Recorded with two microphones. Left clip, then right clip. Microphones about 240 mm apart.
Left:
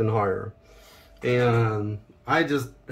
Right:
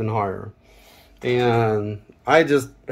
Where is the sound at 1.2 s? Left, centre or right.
Centre.